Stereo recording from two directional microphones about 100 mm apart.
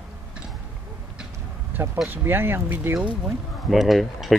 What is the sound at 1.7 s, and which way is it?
Speech, 20° right (ahead or behind).